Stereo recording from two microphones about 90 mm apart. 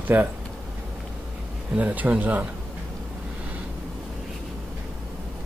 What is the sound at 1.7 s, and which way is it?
Speech, 20° right (ahead or behind).